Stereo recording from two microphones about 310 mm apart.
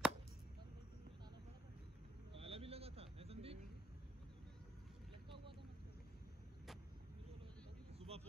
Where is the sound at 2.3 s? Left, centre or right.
Centre.